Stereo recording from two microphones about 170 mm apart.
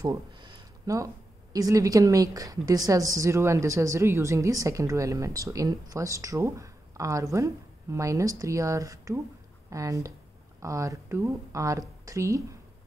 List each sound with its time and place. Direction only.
0.0 s a woman's voice: 25° right (ahead or behind)